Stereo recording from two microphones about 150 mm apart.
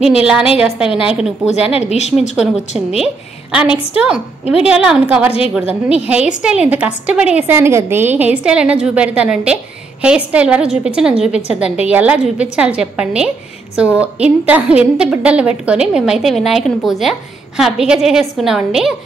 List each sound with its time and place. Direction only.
0.0 s a woman's voice: 5° right (ahead or behind)
1.9 s a woman's voice: 45° left (ahead or behind)
3.5 s a woman's voice: 5° right (ahead or behind)